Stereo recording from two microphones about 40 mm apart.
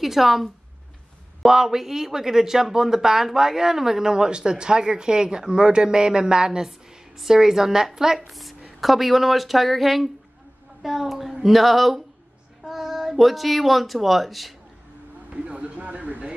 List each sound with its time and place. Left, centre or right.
0.0 s speech: centre
8.3 s speech: centre
15.3 s a sound: right